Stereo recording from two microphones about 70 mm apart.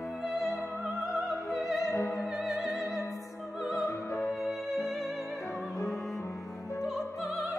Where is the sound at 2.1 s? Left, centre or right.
Centre.